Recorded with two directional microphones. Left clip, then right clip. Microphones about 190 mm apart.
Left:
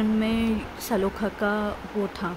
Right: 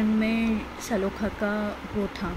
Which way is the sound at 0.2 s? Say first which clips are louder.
Left 1 dB; 25° left (ahead or behind).